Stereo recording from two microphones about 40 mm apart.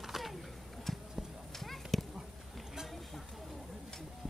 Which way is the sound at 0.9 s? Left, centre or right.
Centre.